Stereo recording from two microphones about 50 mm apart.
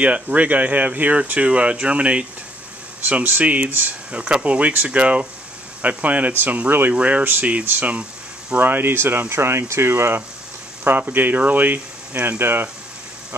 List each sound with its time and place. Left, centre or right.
0.0 s speech: right
4.1 s speech: right
7.0 s speech: right
8.5 s speech: right
10.8 s speech: right